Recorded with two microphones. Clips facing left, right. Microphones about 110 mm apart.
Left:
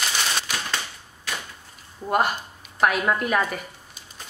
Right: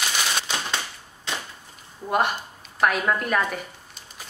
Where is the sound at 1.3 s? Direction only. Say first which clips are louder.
Right 1 dB; 20° right (ahead or behind).